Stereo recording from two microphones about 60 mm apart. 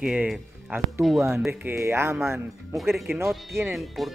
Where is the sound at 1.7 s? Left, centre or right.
Right.